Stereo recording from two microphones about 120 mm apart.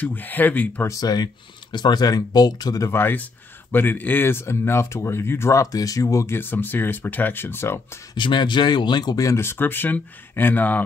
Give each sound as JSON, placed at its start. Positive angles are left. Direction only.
{"t": 0.0, "sound": "speech", "side_deg": 15}
{"t": 0.8, "sound": "speech", "side_deg": 30}
{"t": 8.1, "sound": "speech", "side_deg": 40}